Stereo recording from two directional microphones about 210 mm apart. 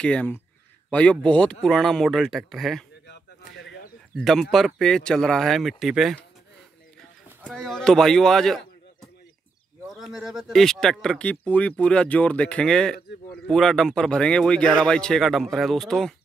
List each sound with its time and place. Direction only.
0.0 s speech: 5° left (ahead or behind)
3.1 s a sound: 55° left (ahead or behind)
4.2 s speech: centre (ahead or behind)
7.2 s a man's voice: 5° right (ahead or behind)